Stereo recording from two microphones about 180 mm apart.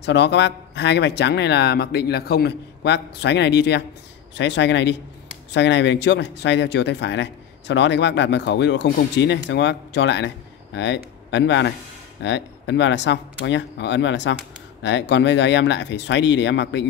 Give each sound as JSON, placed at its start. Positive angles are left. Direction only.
{"t": 0.0, "sound": "speech", "side_deg": 75}